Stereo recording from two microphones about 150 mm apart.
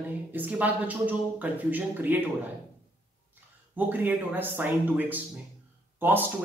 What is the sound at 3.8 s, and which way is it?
Speech, 10° right (ahead or behind).